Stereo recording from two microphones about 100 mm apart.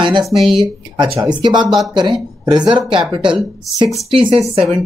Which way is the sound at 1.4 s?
50° right (ahead or behind).